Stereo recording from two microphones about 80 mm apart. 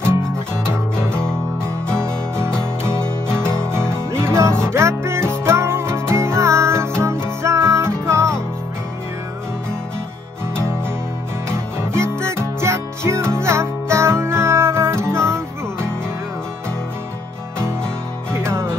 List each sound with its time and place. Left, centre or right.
2.0 s music: right
3.3 s music: centre
3.6 s music: right
11.5 s music: right
18.3 s music: right